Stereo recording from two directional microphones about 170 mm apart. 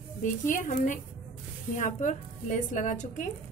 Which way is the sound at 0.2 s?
50° left (ahead or behind).